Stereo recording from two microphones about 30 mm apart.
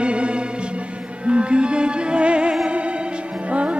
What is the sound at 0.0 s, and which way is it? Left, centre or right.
Music, right.